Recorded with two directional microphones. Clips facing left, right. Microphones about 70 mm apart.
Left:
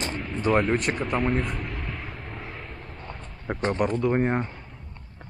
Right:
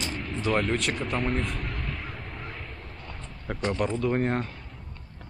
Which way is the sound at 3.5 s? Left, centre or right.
Centre.